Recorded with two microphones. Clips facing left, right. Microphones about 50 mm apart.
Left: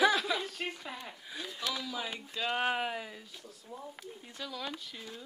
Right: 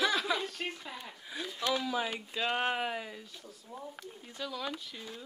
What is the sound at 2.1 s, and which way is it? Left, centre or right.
Speech, centre.